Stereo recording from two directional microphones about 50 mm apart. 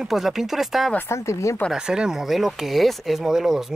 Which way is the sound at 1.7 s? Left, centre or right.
Centre.